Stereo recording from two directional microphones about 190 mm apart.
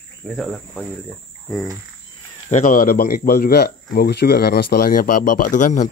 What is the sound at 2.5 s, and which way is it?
Speech, 45° left (ahead or behind).